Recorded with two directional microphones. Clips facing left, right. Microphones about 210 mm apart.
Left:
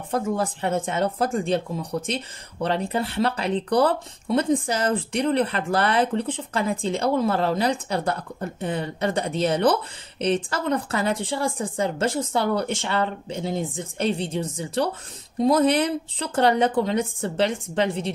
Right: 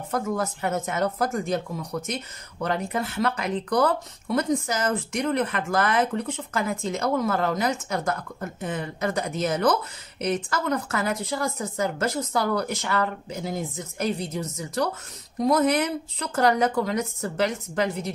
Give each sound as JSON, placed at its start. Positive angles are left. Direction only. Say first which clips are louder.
{"t": 0.1, "sound": "speech", "louder": "left 2 dB", "side_deg": 30}